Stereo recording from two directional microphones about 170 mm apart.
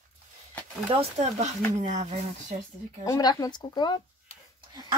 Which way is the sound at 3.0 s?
20° left (ahead or behind).